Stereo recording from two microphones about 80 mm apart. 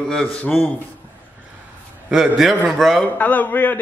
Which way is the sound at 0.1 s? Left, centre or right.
Centre.